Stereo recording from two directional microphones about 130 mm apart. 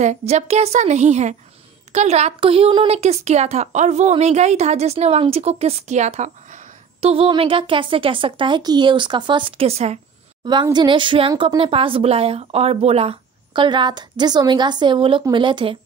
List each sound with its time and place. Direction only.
0.0 s a woman's voice: 60° right (ahead or behind)
7.0 s speech: 50° right (ahead or behind)
10.4 s speech: 35° right (ahead or behind)